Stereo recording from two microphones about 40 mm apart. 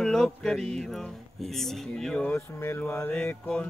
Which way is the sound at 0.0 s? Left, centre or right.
Centre.